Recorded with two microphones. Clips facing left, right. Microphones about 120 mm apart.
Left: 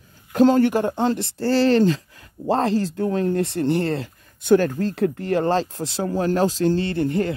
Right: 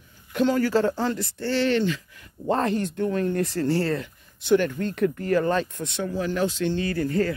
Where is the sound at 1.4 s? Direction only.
35° left (ahead or behind).